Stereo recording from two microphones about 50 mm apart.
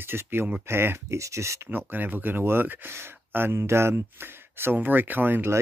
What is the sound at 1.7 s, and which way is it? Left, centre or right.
Speech, right.